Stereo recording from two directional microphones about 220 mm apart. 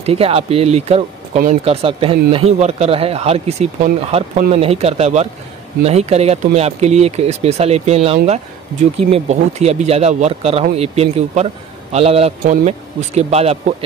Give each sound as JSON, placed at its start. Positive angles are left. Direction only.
{"t": 0.0, "sound": "speech", "side_deg": -25}